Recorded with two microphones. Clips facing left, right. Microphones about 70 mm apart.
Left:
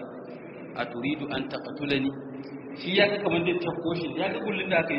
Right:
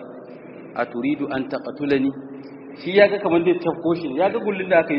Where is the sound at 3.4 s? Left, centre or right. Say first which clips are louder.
Right 8 dB; right.